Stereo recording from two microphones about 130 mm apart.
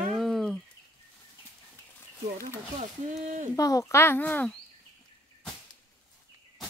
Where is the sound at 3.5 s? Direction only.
25° left (ahead or behind).